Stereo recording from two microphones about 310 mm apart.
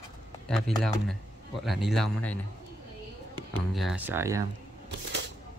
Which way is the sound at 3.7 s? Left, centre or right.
Centre.